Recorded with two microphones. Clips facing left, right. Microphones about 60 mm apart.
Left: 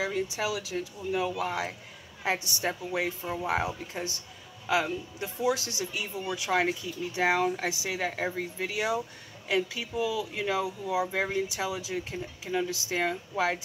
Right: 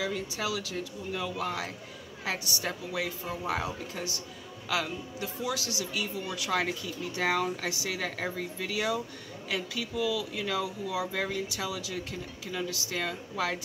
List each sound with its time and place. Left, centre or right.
0.0 s speech: left